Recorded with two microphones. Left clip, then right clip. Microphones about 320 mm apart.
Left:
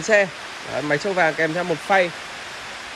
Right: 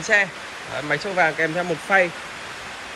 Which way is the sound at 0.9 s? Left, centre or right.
Left.